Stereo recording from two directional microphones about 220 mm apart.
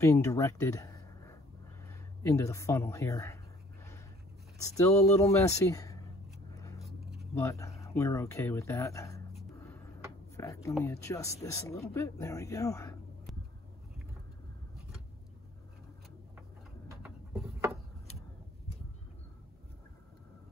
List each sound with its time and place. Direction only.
0.0 s speech: 15° left (ahead or behind)
4.6 s speech: 15° left (ahead or behind)
6.5 s vehicle: 15° left (ahead or behind)
6.8 s a sound: centre (ahead or behind)
7.3 s speech: 15° left (ahead or behind)
9.3 s dishes: 10° left (ahead or behind)
10.3 s speech: 15° left (ahead or behind)
17.0 s a sound: 10° right (ahead or behind)